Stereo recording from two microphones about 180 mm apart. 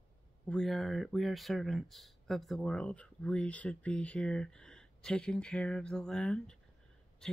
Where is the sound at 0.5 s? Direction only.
Centre (ahead or behind).